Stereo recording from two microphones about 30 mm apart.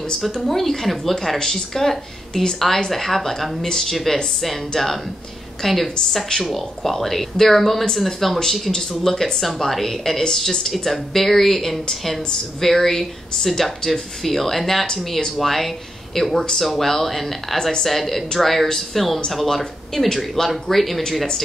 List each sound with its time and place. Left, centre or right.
0.5 s speech: centre
1.4 s a woman's voice: centre
8.7 s a woman's voice: centre
9.7 s a woman's voice: centre